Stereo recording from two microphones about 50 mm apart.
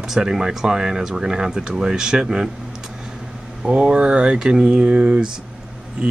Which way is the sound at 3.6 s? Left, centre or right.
Centre.